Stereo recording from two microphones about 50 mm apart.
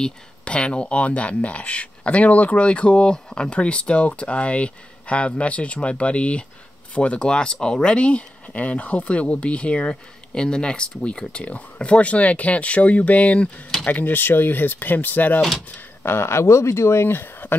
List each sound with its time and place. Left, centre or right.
0.0 s speech: left
16.0 s speech: left